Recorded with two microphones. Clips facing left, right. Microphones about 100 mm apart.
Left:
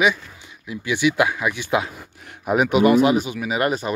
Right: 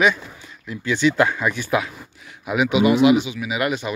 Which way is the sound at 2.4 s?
45° left (ahead or behind).